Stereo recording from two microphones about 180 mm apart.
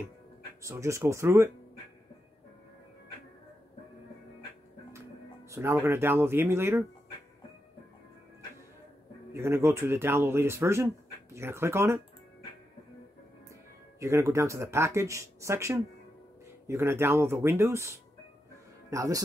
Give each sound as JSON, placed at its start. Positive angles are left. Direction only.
{"t": 0.6, "sound": "speech", "side_deg": -15}
{"t": 5.5, "sound": "speech", "side_deg": -15}
{"t": 9.3, "sound": "speech", "side_deg": -15}
{"t": 13.9, "sound": "speech", "side_deg": -15}